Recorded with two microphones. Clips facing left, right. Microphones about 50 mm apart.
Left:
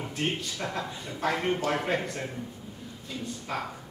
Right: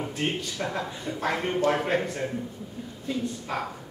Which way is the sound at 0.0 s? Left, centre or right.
Centre.